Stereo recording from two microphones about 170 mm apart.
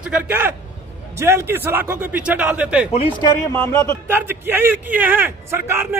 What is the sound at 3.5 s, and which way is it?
Music, 15° left (ahead or behind).